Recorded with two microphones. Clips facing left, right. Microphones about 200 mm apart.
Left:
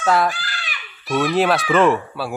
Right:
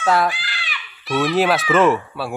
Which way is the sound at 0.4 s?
45° left (ahead or behind).